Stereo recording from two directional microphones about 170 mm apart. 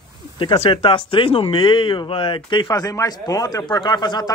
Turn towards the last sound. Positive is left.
turn(degrees=25)  # may be behind; listen again after turning